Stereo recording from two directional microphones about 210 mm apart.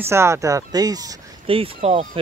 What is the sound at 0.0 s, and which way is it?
Speech, 10° right (ahead or behind).